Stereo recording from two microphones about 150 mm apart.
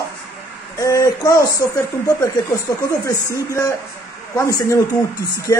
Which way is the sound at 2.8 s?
25° left (ahead or behind).